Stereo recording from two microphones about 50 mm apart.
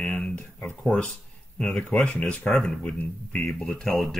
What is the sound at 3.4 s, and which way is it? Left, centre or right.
Speech, centre.